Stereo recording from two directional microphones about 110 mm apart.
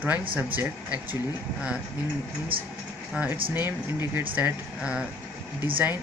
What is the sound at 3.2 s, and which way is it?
Speech, 10° right (ahead or behind).